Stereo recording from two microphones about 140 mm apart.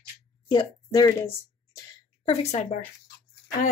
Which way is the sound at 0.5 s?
30° left (ahead or behind).